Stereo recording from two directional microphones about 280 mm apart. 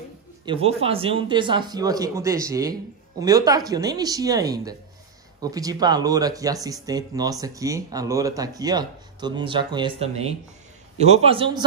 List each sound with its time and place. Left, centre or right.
0.5 s a man's voice: right